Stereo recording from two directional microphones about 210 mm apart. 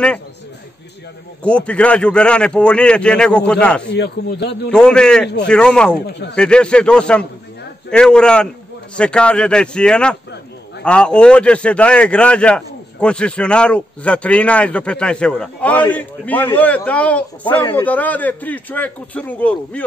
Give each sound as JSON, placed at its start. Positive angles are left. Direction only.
{"t": 1.4, "sound": "a man's voice", "side_deg": 5}
{"t": 3.8, "sound": "a man's voice", "side_deg": 55}
{"t": 4.6, "sound": "a man's voice", "side_deg": 5}
{"t": 5.9, "sound": "a man's voice", "side_deg": 50}
{"t": 6.3, "sound": "a man's voice", "side_deg": 5}